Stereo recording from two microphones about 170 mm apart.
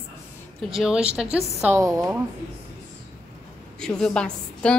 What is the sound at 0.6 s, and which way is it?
Speech, centre (ahead or behind).